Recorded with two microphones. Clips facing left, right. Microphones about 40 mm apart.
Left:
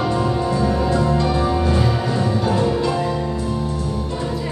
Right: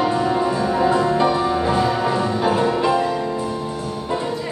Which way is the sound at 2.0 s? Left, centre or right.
Right.